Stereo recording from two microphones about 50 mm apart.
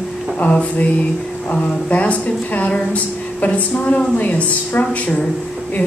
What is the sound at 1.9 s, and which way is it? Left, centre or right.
A woman's voice, left.